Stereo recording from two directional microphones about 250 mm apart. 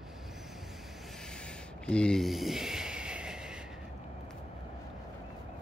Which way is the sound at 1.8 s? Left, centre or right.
Centre.